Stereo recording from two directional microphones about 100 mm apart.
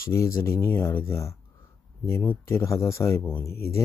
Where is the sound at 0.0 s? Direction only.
30° left (ahead or behind).